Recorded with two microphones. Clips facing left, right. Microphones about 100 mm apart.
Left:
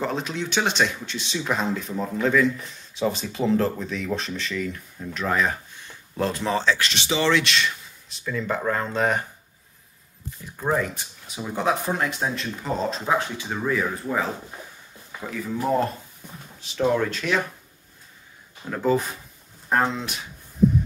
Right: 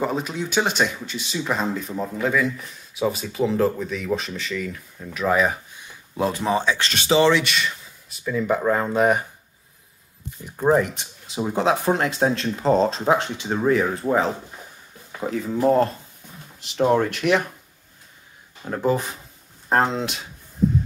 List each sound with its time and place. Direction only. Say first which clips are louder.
0.0 s speech: right 2 dB; 5° right (ahead or behind)
6.9 s speech: right 5 dB; 45° right (ahead or behind)
7.2 s speech: right 2 dB; 5° right (ahead or behind)
10.4 s speech: right 6 dB; 20° right (ahead or behind)
12.3 s speech: right 6 dB; 65° right (ahead or behind)
12.6 s speech: right 7 dB; 35° right (ahead or behind)
17.1 s speech: right 5 dB; 60° right (ahead or behind)
18.7 s speech: right 1 dB; 15° right (ahead or behind)
19.7 s speech: right 3 dB; 35° right (ahead or behind)